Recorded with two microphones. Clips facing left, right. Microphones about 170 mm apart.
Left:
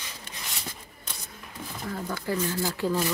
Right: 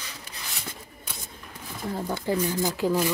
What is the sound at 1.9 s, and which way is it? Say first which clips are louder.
Speech: right 4 dB; 25° right (ahead or behind).